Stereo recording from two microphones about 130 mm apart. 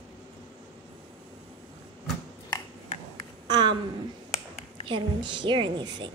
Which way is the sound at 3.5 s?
35° right (ahead or behind).